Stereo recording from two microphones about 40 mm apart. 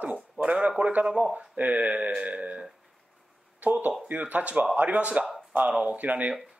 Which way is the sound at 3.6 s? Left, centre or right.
Right.